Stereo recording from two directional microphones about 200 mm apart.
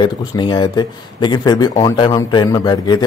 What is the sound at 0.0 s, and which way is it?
Speech, 20° left (ahead or behind).